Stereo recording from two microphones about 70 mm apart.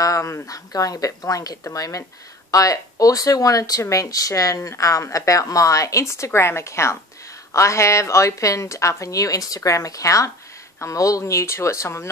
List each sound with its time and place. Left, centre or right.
0.0 s a woman's voice: left
9.6 s a woman's voice: left